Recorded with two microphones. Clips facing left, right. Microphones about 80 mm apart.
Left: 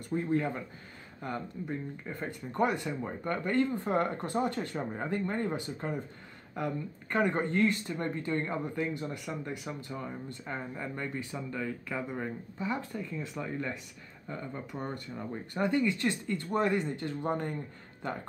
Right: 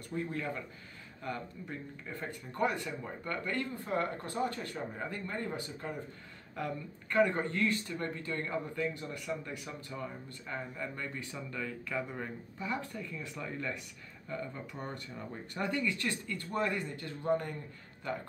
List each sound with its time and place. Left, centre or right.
0.1 s speech: left
6.5 s speech: left